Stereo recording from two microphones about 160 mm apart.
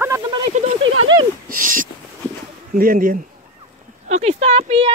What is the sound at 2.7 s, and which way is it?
Speech, 60° right (ahead or behind).